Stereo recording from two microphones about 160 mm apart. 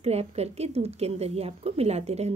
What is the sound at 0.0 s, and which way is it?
Speech, 40° right (ahead or behind).